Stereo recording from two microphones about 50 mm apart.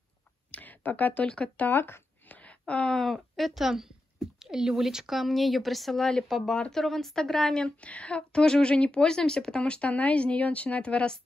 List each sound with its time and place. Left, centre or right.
0.5 s a sound: left
1.3 s speech: left
1.7 s speech: left
2.2 s a sound: left
2.9 s speech: centre
7.8 s speech: left